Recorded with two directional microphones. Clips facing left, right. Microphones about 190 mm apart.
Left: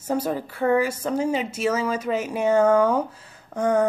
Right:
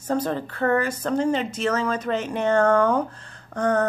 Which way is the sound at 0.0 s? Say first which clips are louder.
Even; 10° left (ahead or behind).